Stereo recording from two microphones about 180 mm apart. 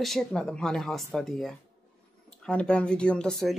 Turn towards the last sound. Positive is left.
turn(degrees=0)  # may be behind; listen again after turning